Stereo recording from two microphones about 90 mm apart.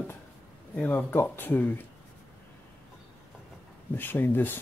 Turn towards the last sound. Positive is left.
turn(degrees=20)  # may be behind; listen again after turning